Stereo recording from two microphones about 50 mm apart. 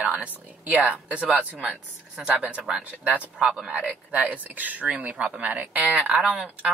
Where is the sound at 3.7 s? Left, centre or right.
Right.